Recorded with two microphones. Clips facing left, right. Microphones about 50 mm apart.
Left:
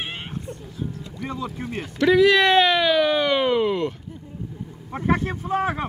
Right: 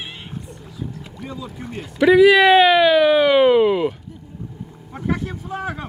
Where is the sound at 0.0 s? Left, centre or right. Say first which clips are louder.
Left 2 dB; left.